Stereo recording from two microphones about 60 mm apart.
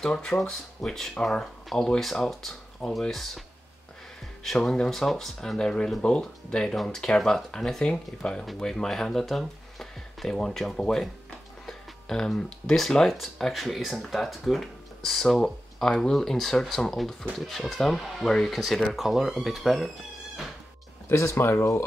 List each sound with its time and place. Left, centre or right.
0.0 s speech: centre
21.1 s speech: left